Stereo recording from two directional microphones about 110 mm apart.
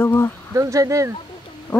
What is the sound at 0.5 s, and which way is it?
Speech, 30° right (ahead or behind).